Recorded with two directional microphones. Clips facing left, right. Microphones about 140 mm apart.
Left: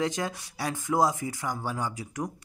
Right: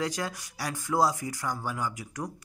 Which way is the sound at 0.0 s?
20° left (ahead or behind).